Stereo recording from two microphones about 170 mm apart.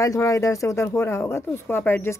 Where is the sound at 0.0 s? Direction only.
20° left (ahead or behind).